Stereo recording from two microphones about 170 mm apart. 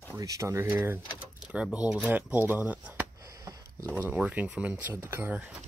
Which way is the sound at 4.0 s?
10° right (ahead or behind).